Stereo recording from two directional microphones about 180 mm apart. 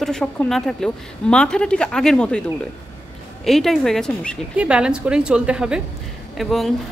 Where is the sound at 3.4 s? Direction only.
Centre (ahead or behind).